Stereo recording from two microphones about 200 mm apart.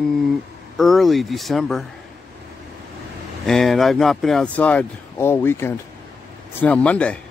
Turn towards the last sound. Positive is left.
turn(degrees=5)  # may be behind; listen again after turning